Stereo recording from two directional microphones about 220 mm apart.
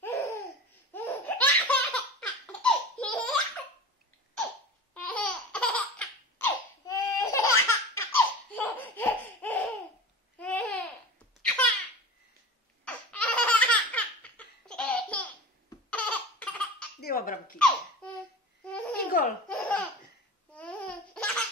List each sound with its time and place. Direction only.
0.0 s laughter: 15° left (ahead or behind)
4.9 s laughter: 5° left (ahead or behind)
10.4 s babbling: 5° left (ahead or behind)
11.4 s a sound: 5° left (ahead or behind)
12.8 s laughter: 5° left (ahead or behind)
17.0 s a sound: 40° left (ahead or behind)
17.6 s laughter: 5° left (ahead or behind)
18.6 s babbling: 5° left (ahead or behind)
19.0 s laughter: 40° left (ahead or behind)
19.5 s laughter: 5° left (ahead or behind)